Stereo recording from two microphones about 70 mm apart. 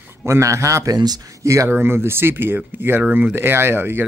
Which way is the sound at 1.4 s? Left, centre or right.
Right.